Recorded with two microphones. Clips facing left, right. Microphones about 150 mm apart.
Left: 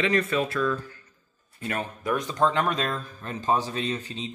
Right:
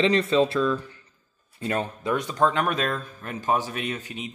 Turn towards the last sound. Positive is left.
turn(degrees=-15)  # may be behind; listen again after turning